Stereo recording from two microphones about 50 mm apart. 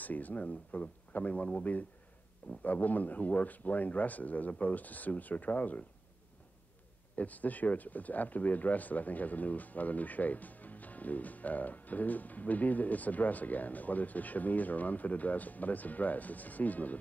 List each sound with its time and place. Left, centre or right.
0.0 s speech: left
7.2 s speech: left